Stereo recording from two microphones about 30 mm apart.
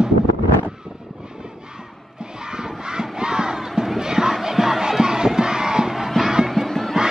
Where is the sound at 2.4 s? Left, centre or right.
Right.